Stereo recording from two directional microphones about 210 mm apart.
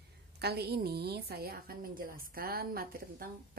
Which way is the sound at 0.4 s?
50° right (ahead or behind).